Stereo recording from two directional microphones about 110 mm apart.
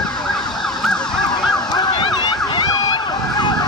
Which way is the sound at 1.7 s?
50° left (ahead or behind).